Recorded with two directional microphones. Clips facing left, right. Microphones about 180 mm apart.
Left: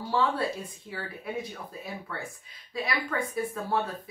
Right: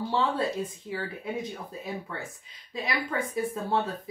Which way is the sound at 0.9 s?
25° right (ahead or behind).